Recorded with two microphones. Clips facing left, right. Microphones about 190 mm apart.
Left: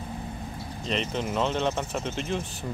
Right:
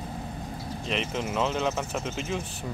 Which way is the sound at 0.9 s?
Centre (ahead or behind).